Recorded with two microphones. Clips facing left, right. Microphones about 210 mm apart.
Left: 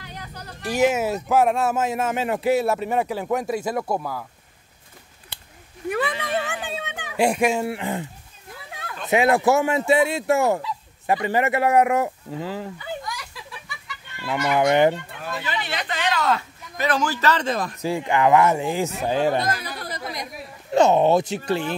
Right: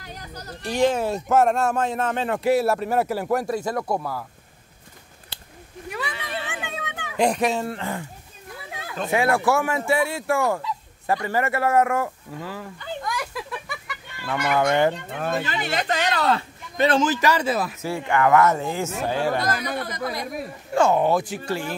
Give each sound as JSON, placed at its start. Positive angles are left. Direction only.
{"t": 0.7, "sound": "speech", "side_deg": 10}
{"t": 3.4, "sound": "speech", "side_deg": 20}
{"t": 3.8, "sound": "speech", "side_deg": 0}
{"t": 5.9, "sound": "a sound", "side_deg": 50}
{"t": 6.6, "sound": "a sound", "side_deg": 30}
{"t": 7.2, "sound": "speech", "side_deg": 10}
{"t": 9.1, "sound": "speech", "side_deg": 20}
{"t": 13.0, "sound": "a sound", "side_deg": -55}
{"t": 14.2, "sound": "speech", "side_deg": 15}
{"t": 15.0, "sound": "speech", "side_deg": -50}
{"t": 17.8, "sound": "speech", "side_deg": 15}
{"t": 19.5, "sound": "speech", "side_deg": -55}
{"t": 20.7, "sound": "speech", "side_deg": 20}